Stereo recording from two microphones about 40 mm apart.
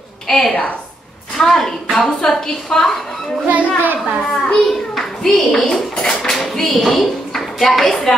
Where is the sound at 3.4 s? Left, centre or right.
Right.